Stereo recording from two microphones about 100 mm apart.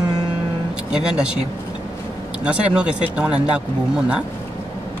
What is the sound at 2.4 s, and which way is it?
Speech, 10° right (ahead or behind).